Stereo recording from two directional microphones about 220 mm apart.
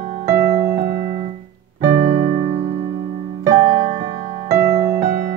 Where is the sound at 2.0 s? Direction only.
35° right (ahead or behind).